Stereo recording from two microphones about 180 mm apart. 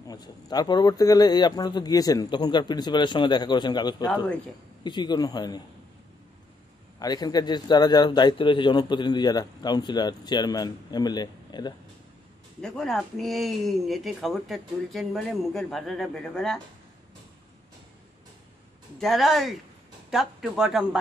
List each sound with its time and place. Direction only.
0.0 s a man's voice: 20° left (ahead or behind)
7.0 s a man's voice: 20° left (ahead or behind)
12.6 s speech: 5° left (ahead or behind)
18.9 s speech: centre (ahead or behind)